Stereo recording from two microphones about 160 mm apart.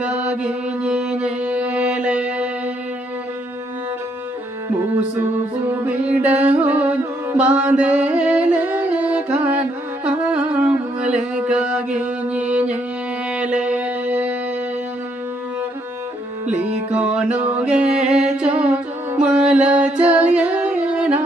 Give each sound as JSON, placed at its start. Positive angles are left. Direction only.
{"t": 0.0, "sound": "mantra", "side_deg": -5}
{"t": 5.7, "sound": "music", "side_deg": -10}
{"t": 16.9, "sound": "music", "side_deg": -10}
{"t": 17.9, "sound": "mantra", "side_deg": -5}